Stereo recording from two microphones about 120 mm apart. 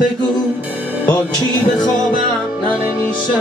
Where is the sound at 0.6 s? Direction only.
15° right (ahead or behind).